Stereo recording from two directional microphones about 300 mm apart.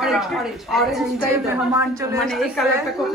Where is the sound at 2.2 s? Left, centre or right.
Centre.